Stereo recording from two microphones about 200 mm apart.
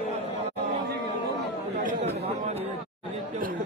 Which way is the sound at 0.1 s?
35° right (ahead or behind).